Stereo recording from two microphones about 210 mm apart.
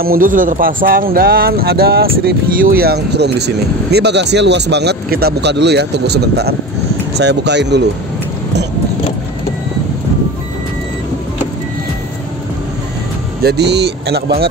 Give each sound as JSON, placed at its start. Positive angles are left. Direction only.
{"t": 0.0, "sound": "speech", "side_deg": -45}
{"t": 13.4, "sound": "speech", "side_deg": -50}